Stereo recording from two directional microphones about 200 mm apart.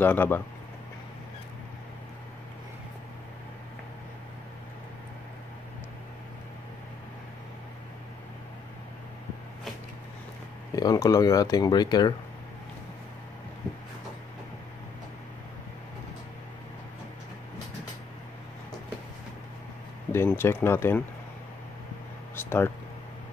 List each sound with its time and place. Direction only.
0.0 s speech: 10° left (ahead or behind)
10.8 s speech: 20° left (ahead or behind)
20.1 s speech: 10° left (ahead or behind)
22.4 s a sound: 10° left (ahead or behind)